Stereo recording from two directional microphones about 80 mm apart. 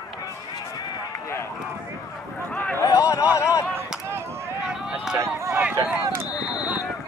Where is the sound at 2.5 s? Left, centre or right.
Centre.